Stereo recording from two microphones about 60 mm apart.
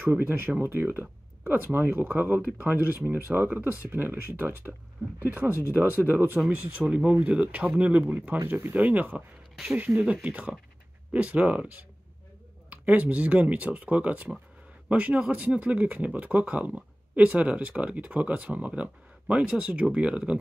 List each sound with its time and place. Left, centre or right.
0.0 s speech: right
6.9 s speech: centre
8.5 s speech: right; by 20.3 s centre